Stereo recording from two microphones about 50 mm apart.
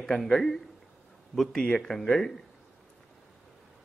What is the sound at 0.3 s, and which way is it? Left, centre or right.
A man's voice, centre.